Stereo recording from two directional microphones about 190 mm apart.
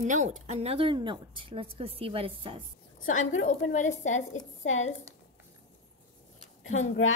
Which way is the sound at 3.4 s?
40° left (ahead or behind).